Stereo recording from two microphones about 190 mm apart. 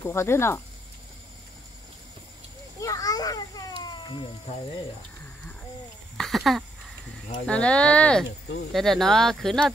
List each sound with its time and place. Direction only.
0.0 s speech: 15° left (ahead or behind)
2.8 s children playing: 20° left (ahead or behind)
6.1 s speech: centre (ahead or behind)